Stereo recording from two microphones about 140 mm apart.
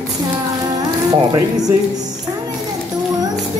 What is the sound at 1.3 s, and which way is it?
Speech, 30° right (ahead or behind).